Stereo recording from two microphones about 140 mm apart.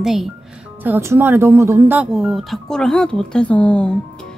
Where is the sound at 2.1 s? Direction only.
Centre (ahead or behind).